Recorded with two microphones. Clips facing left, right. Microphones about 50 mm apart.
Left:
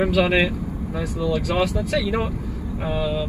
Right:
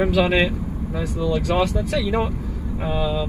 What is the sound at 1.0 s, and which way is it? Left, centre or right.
Speech, left.